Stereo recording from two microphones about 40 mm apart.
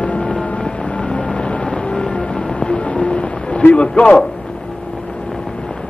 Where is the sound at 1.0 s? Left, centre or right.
Left.